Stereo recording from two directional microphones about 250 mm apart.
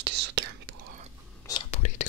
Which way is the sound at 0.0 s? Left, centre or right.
Right.